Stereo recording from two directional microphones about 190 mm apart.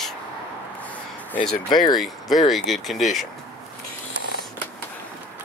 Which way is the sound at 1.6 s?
25° left (ahead or behind).